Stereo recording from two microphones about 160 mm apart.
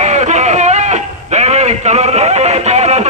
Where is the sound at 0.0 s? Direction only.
45° right (ahead or behind).